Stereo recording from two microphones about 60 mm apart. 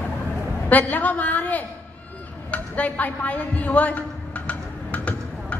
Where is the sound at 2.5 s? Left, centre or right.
Left.